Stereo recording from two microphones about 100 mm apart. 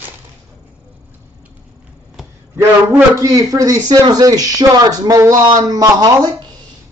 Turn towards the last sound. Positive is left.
turn(degrees=-40)  # may be behind; listen again after turning